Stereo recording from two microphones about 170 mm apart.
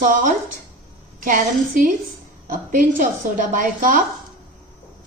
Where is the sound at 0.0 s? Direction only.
50° right (ahead or behind).